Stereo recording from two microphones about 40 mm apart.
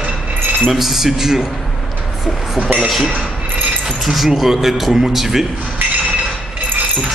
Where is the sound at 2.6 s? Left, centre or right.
Right.